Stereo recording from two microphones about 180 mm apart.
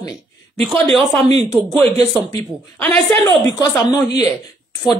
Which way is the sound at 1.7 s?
30° right (ahead or behind).